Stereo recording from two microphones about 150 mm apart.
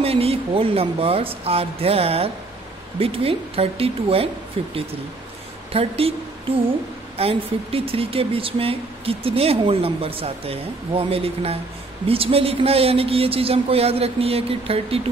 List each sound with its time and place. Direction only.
0.0 s speech: 40° right (ahead or behind)
7.2 s speech: 40° right (ahead or behind)